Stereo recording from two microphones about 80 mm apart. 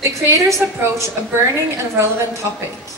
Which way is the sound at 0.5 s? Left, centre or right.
Right.